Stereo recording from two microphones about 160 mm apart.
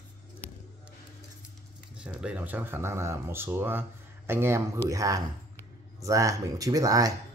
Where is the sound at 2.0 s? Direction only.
5° right (ahead or behind); by 7.1 s 20° right (ahead or behind).